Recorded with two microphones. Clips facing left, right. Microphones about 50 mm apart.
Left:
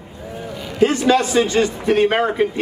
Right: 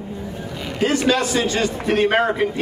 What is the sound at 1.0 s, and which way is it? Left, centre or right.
Speech, left.